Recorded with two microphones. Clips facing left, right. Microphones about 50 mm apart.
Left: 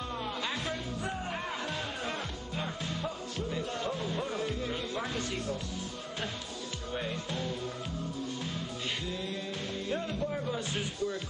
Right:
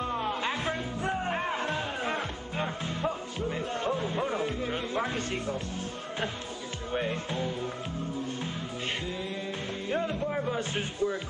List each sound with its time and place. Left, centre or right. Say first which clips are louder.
0.0 s music: right 5 dB; right
6.9 s speech: right 5 dB; right
9.8 s speech: right 4 dB; right